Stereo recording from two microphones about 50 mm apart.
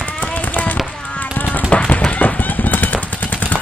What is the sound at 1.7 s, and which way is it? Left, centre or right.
Music, left.